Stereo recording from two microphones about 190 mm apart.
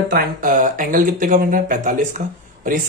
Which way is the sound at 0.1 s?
50° right (ahead or behind).